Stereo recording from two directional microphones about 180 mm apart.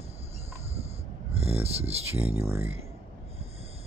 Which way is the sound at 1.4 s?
35° right (ahead or behind).